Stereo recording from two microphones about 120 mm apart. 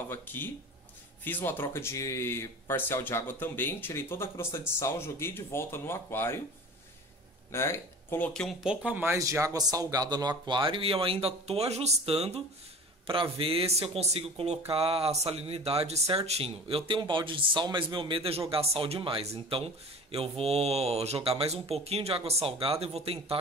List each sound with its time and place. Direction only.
0.1 s speech: 15° left (ahead or behind)
7.5 s speech: 20° left (ahead or behind)
8.3 s speech: 5° left (ahead or behind)
8.6 s speech: 10° right (ahead or behind); by 12.4 s 60° right (ahead or behind)
13.0 s speech: 45° right (ahead or behind)